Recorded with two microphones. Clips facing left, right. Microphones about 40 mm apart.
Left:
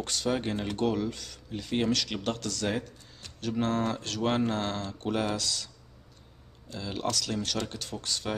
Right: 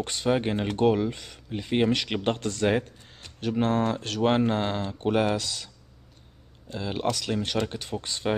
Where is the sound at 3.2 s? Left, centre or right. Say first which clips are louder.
Right 4 dB; centre.